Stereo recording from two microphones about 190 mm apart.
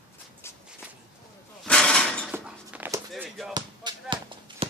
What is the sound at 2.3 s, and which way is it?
Walk, 10° right (ahead or behind).